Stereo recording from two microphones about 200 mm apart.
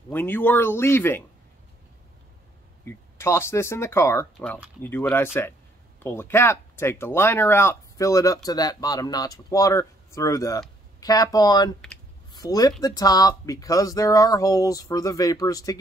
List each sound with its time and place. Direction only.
0.1 s speech: 10° left (ahead or behind)
2.8 s speech: 10° left (ahead or behind)